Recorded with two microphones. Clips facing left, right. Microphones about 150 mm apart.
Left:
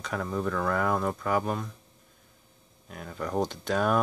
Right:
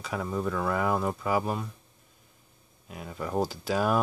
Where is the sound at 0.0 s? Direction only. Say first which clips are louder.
Even; 5° right (ahead or behind).